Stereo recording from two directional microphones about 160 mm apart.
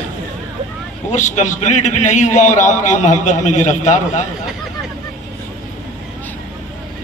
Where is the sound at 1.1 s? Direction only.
50° left (ahead or behind).